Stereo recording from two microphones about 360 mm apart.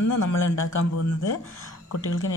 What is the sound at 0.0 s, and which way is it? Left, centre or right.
Speech, left.